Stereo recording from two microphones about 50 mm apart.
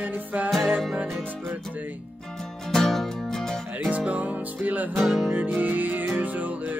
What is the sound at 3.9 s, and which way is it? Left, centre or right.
Music, right.